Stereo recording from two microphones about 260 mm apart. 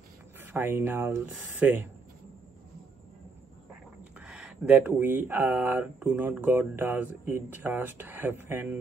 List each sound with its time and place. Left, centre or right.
0.5 s speech: centre
4.3 s speech: centre